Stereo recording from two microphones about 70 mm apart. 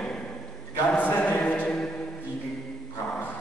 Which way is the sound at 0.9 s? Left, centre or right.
Left.